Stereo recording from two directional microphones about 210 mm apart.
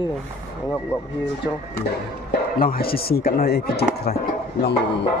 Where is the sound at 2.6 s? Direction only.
45° left (ahead or behind).